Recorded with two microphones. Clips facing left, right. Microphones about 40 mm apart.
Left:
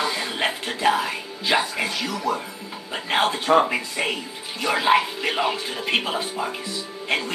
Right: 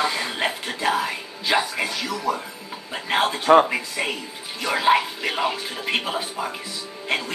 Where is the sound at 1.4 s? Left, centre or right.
Centre.